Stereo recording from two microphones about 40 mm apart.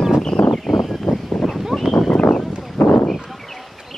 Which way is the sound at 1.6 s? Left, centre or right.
Centre.